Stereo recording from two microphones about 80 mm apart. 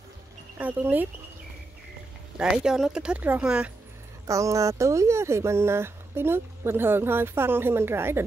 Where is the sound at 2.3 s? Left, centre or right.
Centre.